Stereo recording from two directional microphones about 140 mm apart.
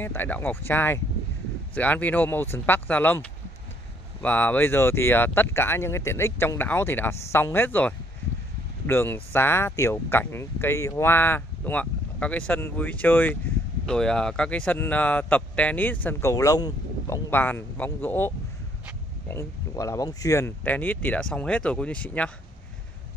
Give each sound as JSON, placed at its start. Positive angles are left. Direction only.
{"t": 0.0, "sound": "speech", "side_deg": 15}
{"t": 17.3, "sound": "speech", "side_deg": 15}